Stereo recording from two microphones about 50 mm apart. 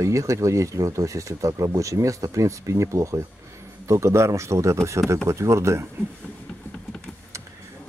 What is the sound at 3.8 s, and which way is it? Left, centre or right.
A man's voice, right.